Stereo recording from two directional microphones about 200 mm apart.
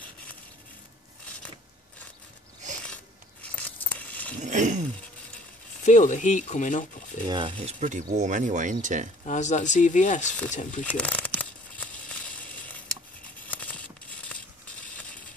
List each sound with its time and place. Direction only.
3.4 s a sound: 5° left (ahead or behind)
4.4 s a sound: 40° right (ahead or behind)
5.9 s speech: 40° left (ahead or behind)
7.2 s speech: 25° right (ahead or behind)
7.6 s speech: 35° right (ahead or behind)
9.2 s speech: 35° left (ahead or behind)
10.8 s crumpling: 5° left (ahead or behind)
13.5 s tearing: 5° left (ahead or behind)
14.3 s a sound: 5° left (ahead or behind)